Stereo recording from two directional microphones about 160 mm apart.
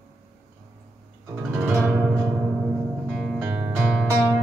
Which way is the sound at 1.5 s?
10° right (ahead or behind).